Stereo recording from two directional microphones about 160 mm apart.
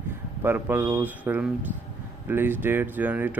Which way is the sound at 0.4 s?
15° right (ahead or behind).